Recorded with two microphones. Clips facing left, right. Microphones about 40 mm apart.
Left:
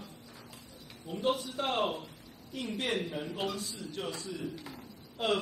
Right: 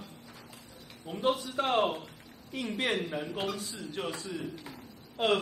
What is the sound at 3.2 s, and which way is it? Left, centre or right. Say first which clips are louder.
Speech: right 1 dB; centre.